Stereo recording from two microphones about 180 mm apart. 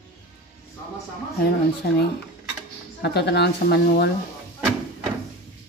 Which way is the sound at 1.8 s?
70° left (ahead or behind).